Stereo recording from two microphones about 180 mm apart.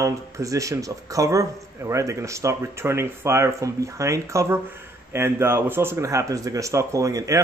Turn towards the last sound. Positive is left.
turn(degrees=-20)  # may be behind; listen again after turning